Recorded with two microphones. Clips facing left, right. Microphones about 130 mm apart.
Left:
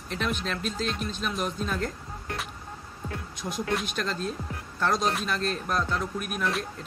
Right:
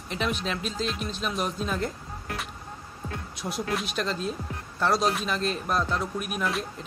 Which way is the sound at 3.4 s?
15° right (ahead or behind).